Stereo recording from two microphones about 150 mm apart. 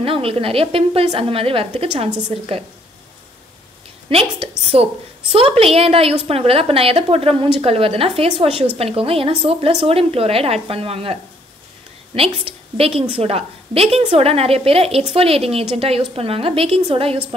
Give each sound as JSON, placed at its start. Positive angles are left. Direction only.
{"t": 0.0, "sound": "a woman's voice", "side_deg": -40}
{"t": 4.1, "sound": "a woman's voice", "side_deg": -40}
{"t": 12.2, "sound": "a woman's voice", "side_deg": -40}